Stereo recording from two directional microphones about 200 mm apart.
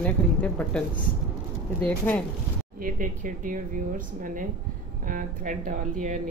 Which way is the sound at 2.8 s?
40° right (ahead or behind).